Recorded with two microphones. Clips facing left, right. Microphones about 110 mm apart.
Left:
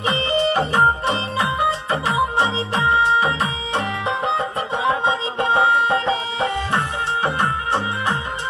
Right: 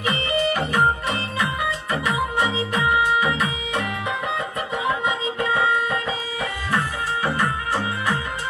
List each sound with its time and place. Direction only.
0.0 s music: 30° left (ahead or behind)